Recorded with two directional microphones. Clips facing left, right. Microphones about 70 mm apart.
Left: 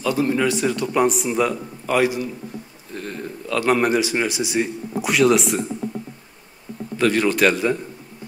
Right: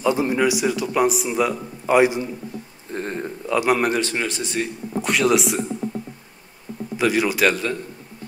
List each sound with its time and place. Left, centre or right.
0.0 s speech: right; by 1.6 s centre
1.9 s a man's voice: right
2.9 s speech: right
3.4 s a man's voice: centre
3.7 s speech: centre
7.0 s a man's voice: centre